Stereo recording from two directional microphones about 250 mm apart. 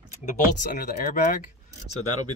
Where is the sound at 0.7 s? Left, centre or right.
Left.